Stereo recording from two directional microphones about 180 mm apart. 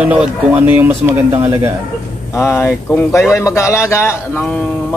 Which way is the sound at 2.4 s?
15° left (ahead or behind).